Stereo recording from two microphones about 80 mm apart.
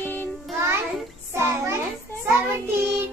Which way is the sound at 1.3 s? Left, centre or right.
Right.